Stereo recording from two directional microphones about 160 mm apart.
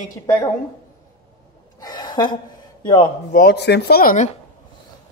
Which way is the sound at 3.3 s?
80° left.